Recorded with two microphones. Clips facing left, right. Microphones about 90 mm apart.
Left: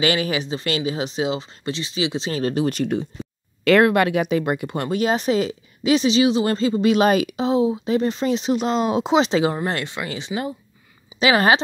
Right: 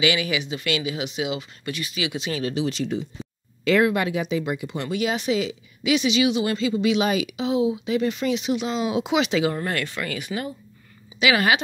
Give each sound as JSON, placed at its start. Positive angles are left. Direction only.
{"t": 0.0, "sound": "speech", "side_deg": 40}
{"t": 9.6, "sound": "speech", "side_deg": 20}
{"t": 11.1, "sound": "speech", "side_deg": 35}